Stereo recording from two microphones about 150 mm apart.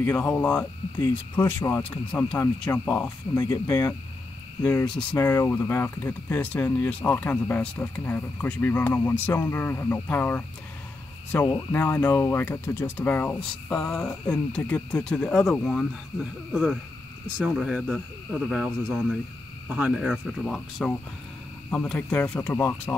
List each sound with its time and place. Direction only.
0.0 s speech: 10° left (ahead or behind)
3.3 s speech: 25° left (ahead or behind)
4.6 s speech: 10° left (ahead or behind)
5.1 s speech: 20° left (ahead or behind)
17.4 s speech: 5° right (ahead or behind); by 22.9 s 15° left (ahead or behind)